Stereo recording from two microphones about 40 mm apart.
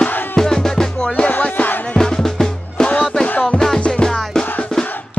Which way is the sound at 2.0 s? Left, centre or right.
Centre.